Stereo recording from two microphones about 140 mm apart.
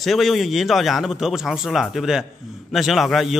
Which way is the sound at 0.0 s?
Centre (ahead or behind).